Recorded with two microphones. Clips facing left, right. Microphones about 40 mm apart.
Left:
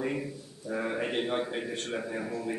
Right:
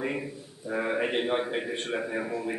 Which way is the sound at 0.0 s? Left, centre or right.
Centre.